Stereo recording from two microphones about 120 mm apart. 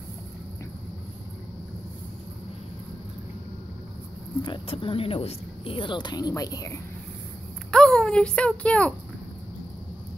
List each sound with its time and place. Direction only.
4.4 s speech: 45° left (ahead or behind)
7.7 s speech: 5° left (ahead or behind)